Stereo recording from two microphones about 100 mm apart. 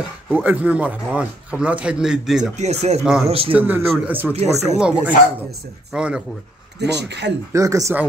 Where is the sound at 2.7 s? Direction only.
90° right.